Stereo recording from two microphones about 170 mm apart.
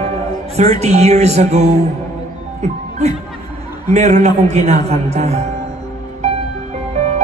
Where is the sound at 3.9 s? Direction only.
40° right (ahead or behind).